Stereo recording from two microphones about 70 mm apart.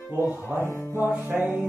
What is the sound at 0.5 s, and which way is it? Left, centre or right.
Music, left.